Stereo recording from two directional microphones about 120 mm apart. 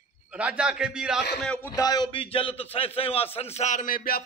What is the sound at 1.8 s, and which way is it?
A man's voice, 35° left (ahead or behind).